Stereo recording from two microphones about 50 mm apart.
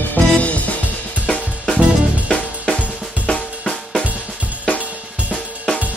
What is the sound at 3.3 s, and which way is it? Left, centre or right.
Drum, left.